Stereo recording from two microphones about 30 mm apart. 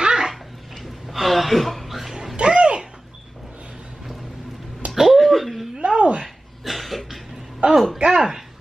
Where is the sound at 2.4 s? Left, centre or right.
Right.